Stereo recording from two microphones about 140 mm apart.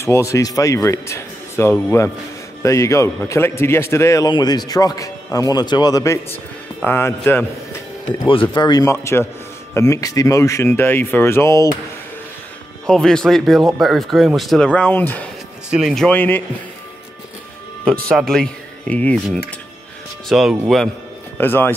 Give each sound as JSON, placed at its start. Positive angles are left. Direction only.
{"t": 0.0, "sound": "speech", "side_deg": 20}
{"t": 8.3, "sound": "speech", "side_deg": 35}
{"t": 12.8, "sound": "speech", "side_deg": 5}
{"t": 15.7, "sound": "speech", "side_deg": 0}
{"t": 18.0, "sound": "speech", "side_deg": 5}
{"t": 20.2, "sound": "speech", "side_deg": 0}
{"t": 21.4, "sound": "speech", "side_deg": 15}